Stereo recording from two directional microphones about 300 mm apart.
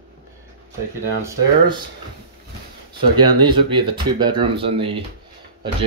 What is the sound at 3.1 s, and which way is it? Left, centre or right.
Speech, centre.